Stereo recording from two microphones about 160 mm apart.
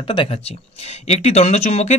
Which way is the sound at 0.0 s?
35° left (ahead or behind).